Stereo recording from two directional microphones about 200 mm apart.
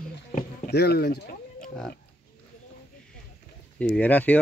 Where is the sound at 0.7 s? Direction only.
55° left (ahead or behind).